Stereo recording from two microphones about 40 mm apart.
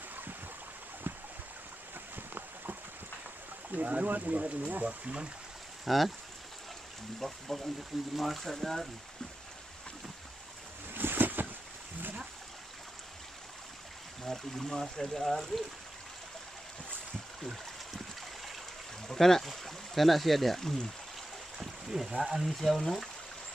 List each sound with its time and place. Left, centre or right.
0.1 s stream: right
1.1 s a sound: right
3.7 s speech: right
5.9 s speech: centre
7.2 s speech: centre
10.9 s boat: right
14.2 s speech: centre
19.0 s speech: centre
21.5 s boat: centre
22.3 s speech: centre
22.6 s speech: centre